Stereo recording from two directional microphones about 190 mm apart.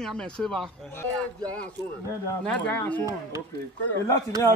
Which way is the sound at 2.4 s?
10° left (ahead or behind).